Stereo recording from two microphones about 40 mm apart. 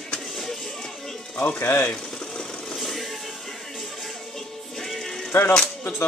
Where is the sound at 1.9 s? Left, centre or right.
Centre.